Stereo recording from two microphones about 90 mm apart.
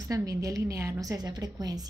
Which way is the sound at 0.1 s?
40° right (ahead or behind).